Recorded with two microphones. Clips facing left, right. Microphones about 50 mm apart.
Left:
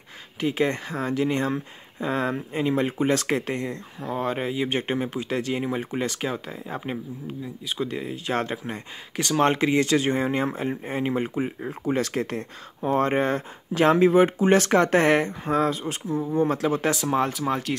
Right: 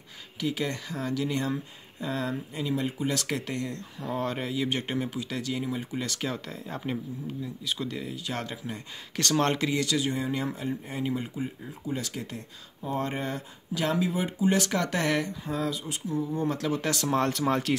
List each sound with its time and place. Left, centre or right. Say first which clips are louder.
0.4 s speech: left 6 dB; left
6.0 s speech: left 4 dB; left
9.1 s speech: left 4 dB; centre
9.5 s speech: left 6 dB; left
16.9 s speech: left 3 dB; centre